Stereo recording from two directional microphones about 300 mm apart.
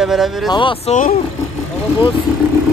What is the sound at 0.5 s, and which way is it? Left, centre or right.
Speech, centre.